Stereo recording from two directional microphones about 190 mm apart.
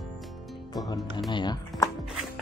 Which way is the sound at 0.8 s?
20° left (ahead or behind).